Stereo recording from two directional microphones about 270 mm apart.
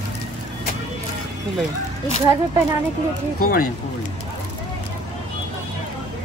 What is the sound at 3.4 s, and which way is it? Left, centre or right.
Speech, left.